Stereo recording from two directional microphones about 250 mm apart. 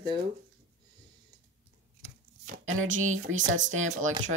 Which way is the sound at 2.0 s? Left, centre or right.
Right.